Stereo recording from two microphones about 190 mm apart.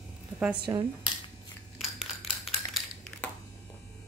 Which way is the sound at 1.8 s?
Centre (ahead or behind).